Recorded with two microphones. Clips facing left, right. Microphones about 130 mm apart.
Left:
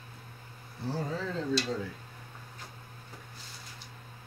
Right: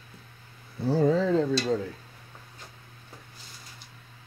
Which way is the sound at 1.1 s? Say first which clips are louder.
Right 12 dB; 90° right.